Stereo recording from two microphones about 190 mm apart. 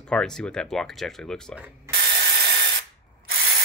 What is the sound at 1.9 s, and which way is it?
Ratchet, 15° right (ahead or behind).